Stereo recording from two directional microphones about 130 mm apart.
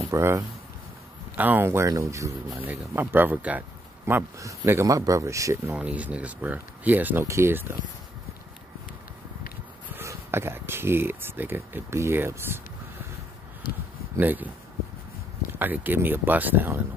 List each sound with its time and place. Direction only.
0.1 s speech: 20° right (ahead or behind)
9.9 s speech: 20° right (ahead or behind)
14.1 s speech: 15° right (ahead or behind)
15.6 s speech: 15° right (ahead or behind)